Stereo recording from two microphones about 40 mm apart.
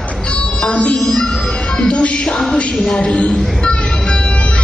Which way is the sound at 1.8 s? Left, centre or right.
Left.